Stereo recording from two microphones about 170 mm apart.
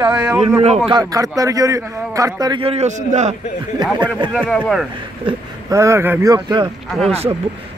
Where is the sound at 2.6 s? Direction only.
40° right (ahead or behind).